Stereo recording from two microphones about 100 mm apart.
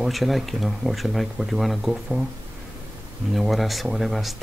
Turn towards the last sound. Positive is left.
turn(degrees=0)  # may be behind; listen again after turning